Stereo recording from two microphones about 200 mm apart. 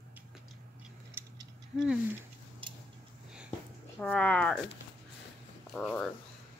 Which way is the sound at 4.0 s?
5° left (ahead or behind).